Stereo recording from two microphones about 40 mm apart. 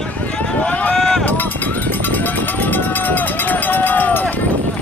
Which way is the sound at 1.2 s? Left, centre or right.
Left.